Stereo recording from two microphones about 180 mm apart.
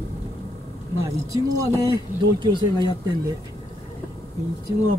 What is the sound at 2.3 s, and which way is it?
Speech, 25° right (ahead or behind).